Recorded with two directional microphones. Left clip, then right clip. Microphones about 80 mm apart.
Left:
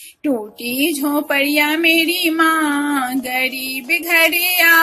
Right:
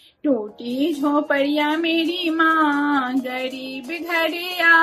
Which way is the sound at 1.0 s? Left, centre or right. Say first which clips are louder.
Left 1 dB; left.